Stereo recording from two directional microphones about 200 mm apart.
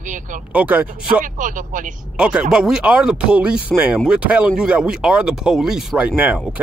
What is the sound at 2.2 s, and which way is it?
Speech, 5° right (ahead or behind).